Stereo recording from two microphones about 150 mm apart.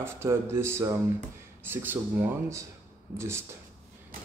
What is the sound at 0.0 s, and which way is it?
Speech, 15° right (ahead or behind).